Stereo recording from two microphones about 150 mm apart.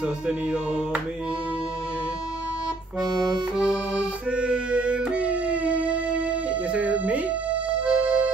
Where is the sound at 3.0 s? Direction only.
25° right (ahead or behind).